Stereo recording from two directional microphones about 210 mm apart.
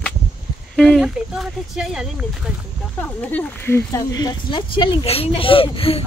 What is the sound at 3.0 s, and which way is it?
Speech, 10° left (ahead or behind).